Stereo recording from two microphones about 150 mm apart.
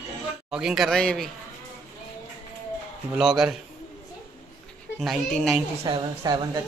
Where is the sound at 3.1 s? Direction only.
5° right (ahead or behind).